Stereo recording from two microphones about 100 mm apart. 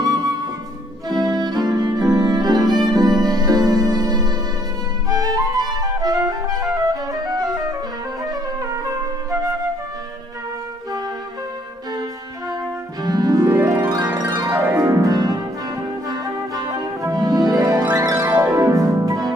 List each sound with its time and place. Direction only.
0.0 s flute: 40° right (ahead or behind)
1.0 s music: 40° right (ahead or behind)
13.0 s music: 40° right (ahead or behind)
14.5 s music: 20° right (ahead or behind)
14.8 s music: 35° right (ahead or behind)